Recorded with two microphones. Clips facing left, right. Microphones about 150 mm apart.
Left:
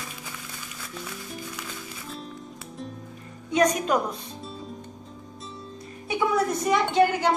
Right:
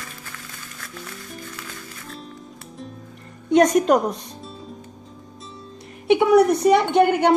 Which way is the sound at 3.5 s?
55° right (ahead or behind).